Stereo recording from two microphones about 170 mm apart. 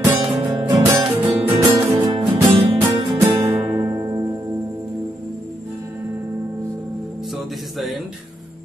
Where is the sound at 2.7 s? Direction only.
35° right (ahead or behind).